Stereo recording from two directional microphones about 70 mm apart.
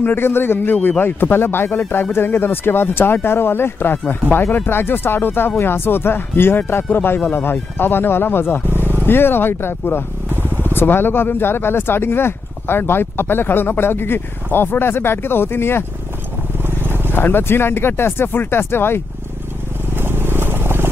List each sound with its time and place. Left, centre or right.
0.0 s speech: left
8.6 s vehicle: right
9.0 s speech: left
16.6 s vehicle: right
17.1 s speech: left
20.0 s vehicle: right